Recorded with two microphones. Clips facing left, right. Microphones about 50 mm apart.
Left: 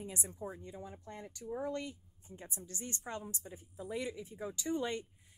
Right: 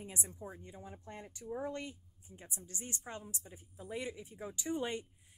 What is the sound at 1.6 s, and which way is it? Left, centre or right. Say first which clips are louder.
Speech: left 4 dB; right.